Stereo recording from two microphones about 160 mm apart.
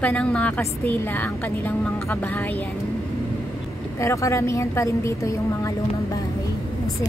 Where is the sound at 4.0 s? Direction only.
20° left (ahead or behind).